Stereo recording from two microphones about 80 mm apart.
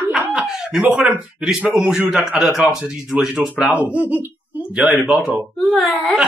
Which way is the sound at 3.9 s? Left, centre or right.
Centre.